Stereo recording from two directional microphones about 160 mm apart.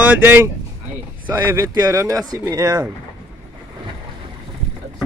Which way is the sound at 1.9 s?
20° right (ahead or behind).